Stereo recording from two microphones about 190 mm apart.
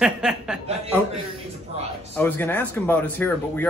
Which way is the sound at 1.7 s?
35° right (ahead or behind).